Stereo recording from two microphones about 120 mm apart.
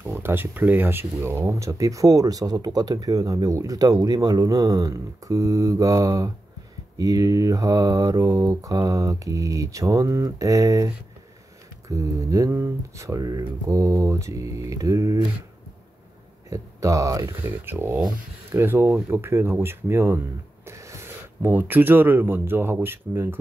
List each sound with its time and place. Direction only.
0.0 s speech: 20° right (ahead or behind)
11.9 s speech: 25° right (ahead or behind)
16.4 s speech: 25° right (ahead or behind)